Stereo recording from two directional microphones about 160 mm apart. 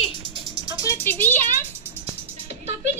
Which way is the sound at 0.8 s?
15° left (ahead or behind).